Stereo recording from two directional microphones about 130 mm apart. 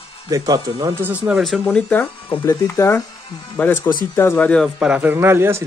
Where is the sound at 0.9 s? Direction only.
15° right (ahead or behind).